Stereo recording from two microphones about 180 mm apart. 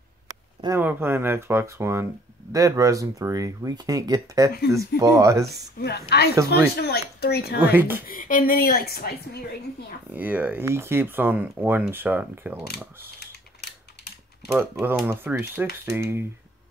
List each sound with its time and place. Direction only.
0.7 s speech: 10° right (ahead or behind)
5.8 s a child's voice: 65° left (ahead or behind)
6.3 s speech: 15° right (ahead or behind)
6.8 s a child's voice: 60° left (ahead or behind)
7.7 s speech: 10° right (ahead or behind)
8.1 s a woman's voice: 50° left (ahead or behind)
10.1 s speech: 10° right (ahead or behind)
13.2 s typewriter: 65° left (ahead or behind)
14.6 s speech: 10° right (ahead or behind)